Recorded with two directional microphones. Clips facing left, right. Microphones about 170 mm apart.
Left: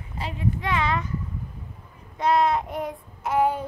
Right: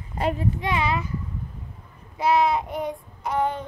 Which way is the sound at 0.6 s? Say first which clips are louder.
Left 2 dB; 10° right (ahead or behind).